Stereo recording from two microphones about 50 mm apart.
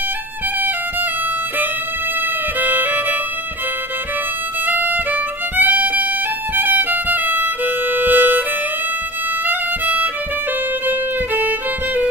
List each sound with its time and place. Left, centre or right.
2.6 s music: right
4.6 s violin: right
9.5 s violin: right
10.9 s music: right